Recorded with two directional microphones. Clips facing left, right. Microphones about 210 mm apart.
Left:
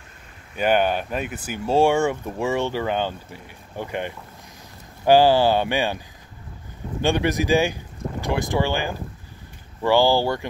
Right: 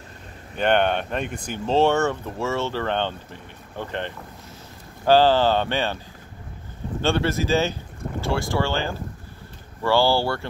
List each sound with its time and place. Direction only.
0.6 s speech: 5° left (ahead or behind)